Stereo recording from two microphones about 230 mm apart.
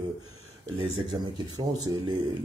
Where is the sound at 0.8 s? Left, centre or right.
Right.